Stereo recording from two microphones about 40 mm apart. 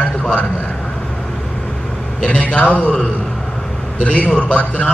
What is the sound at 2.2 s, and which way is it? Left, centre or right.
Speech, left.